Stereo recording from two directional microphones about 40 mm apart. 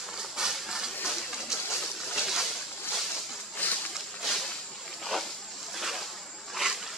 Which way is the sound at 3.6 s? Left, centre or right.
Left.